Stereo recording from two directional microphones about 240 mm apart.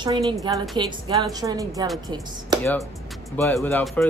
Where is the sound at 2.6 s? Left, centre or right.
Centre.